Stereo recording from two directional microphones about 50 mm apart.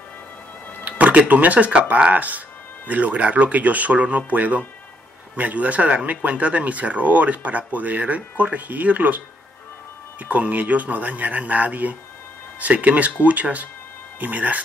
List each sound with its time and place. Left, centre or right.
0.8 s speech: right
10.2 s speech: right